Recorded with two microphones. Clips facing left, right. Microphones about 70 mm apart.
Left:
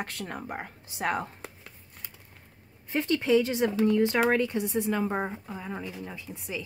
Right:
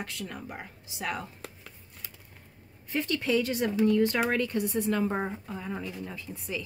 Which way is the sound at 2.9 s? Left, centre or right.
Left.